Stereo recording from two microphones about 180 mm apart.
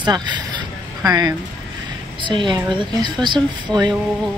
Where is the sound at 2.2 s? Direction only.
25° right (ahead or behind).